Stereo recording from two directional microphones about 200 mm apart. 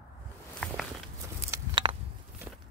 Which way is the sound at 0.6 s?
Centre (ahead or behind).